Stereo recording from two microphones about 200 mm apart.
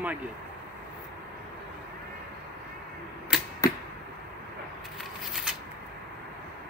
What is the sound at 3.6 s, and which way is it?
Arrow, 15° left (ahead or behind).